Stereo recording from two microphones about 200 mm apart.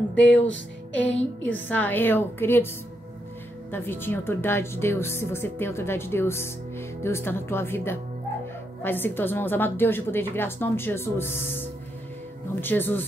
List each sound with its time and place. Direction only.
0.1 s a woman's voice: 5° left (ahead or behind)
3.7 s a woman's voice: 10° left (ahead or behind)